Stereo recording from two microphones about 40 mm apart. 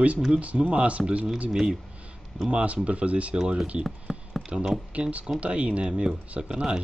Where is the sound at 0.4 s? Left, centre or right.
Right.